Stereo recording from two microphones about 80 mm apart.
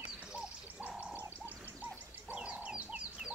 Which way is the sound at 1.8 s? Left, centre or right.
Centre.